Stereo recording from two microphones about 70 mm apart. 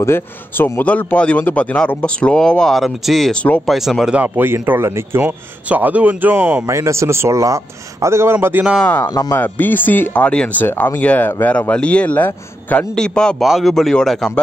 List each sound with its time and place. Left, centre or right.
0.0 s a man's voice: left; by 3.3 s centre
3.3 s speech: left
3.6 s a man's voice: centre
4.1 s speech: right
4.8 s a man's voice: right
5.2 s speech: right
6.7 s a man's voice: right
8.8 s speech: left
10.2 s a man's voice: centre
10.6 s speech: left
11.0 s a man's voice: centre
13.4 s a man's voice: centre